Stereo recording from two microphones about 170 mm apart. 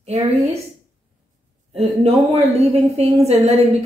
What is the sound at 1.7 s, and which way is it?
A woman's voice, 35° right (ahead or behind).